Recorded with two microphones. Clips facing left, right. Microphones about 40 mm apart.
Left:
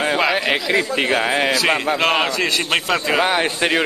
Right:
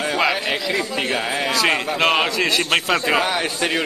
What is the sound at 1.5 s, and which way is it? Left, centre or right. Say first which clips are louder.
Speech: left 2 dB; centre.